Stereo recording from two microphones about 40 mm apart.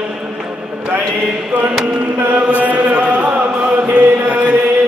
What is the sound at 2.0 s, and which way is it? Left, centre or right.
Chant, right.